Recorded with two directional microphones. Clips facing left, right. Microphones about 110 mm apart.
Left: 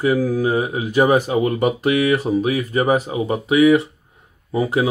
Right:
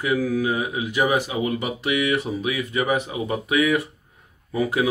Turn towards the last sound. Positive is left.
turn(degrees=30)  # may be behind; listen again after turning